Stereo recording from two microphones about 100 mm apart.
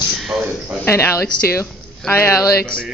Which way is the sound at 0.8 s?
25° left (ahead or behind).